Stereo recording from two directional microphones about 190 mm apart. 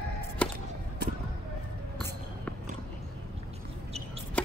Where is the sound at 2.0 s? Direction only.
10° left (ahead or behind).